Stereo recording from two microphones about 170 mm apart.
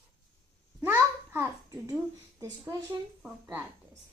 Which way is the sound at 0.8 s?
15° right (ahead or behind).